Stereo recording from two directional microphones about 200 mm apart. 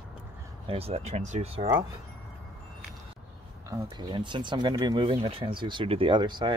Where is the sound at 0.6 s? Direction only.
30° right (ahead or behind).